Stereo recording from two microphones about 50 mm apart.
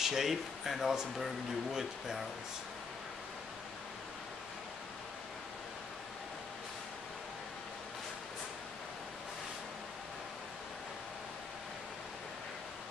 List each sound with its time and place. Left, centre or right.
0.0 s speech: centre